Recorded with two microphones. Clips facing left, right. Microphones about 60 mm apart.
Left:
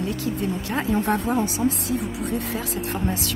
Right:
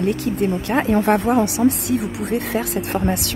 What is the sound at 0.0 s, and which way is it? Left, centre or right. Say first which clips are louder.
Speech: right 6 dB; right.